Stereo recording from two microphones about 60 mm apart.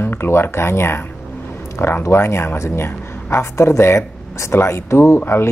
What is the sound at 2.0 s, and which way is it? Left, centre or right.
Speech, left.